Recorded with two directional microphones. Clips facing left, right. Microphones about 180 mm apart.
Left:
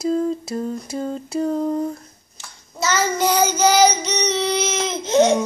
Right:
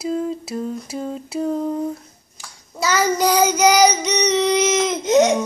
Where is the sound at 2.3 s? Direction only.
20° left (ahead or behind).